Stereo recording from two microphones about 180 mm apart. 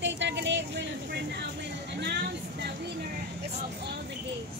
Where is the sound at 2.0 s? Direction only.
65° right (ahead or behind).